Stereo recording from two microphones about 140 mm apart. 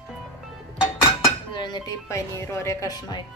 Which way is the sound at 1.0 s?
30° left (ahead or behind).